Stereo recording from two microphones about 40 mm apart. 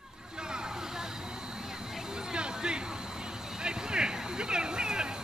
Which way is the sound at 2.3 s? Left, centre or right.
Right.